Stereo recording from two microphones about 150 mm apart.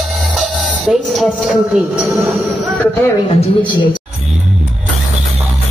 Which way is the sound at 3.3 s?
35° left (ahead or behind).